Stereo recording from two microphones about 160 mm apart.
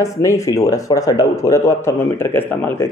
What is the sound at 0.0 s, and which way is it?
Speech, 20° left (ahead or behind).